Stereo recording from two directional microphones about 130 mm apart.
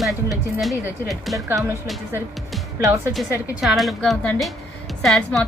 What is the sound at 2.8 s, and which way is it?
Speech, 20° right (ahead or behind).